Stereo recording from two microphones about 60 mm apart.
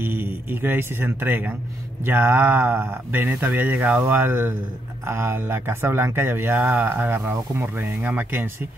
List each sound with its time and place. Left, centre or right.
0.0 s speech: right